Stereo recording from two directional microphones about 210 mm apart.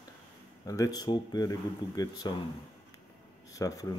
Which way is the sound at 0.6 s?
15° left (ahead or behind).